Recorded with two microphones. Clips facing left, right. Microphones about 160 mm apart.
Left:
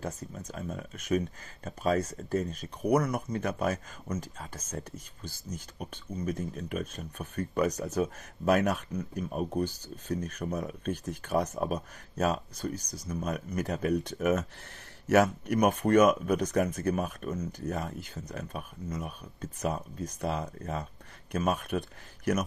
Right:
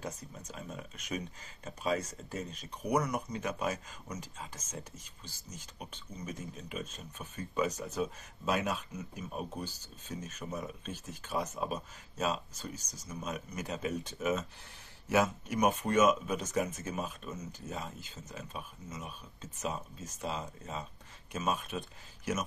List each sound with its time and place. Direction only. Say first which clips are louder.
0.5 s speech: left 5 dB; 50° left (ahead or behind)